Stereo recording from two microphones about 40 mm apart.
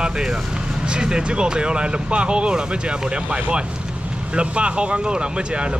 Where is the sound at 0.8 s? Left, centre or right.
Right.